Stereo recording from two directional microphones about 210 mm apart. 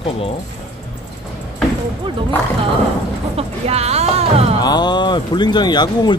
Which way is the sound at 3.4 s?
30° right (ahead or behind).